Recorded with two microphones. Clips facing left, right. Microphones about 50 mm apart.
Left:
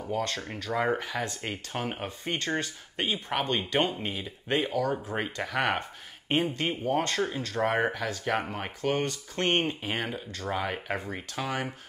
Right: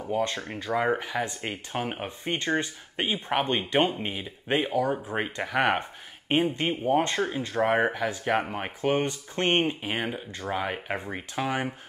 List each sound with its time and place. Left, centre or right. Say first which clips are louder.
0.0 s speech: right 3 dB; centre
9.7 s speech: right 2 dB; centre
10.9 s speech: right 1 dB; right